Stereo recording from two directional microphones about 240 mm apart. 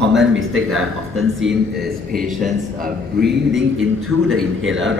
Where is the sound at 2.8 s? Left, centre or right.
Right.